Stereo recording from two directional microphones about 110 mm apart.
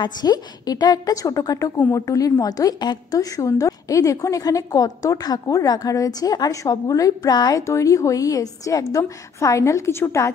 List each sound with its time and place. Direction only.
0.0 s a woman's voice: 40° left (ahead or behind)